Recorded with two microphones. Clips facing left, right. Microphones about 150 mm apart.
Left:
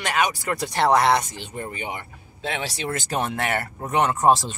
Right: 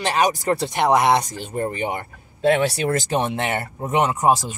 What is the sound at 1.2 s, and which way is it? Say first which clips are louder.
Speech: right 8 dB; 45° right (ahead or behind).